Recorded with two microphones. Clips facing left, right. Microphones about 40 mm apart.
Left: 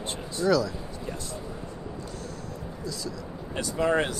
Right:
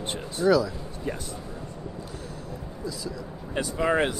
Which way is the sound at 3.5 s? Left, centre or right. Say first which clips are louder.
Right 1 dB; right.